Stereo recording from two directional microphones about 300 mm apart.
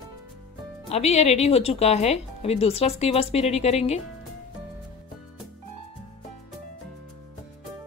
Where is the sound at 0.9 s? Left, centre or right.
Left.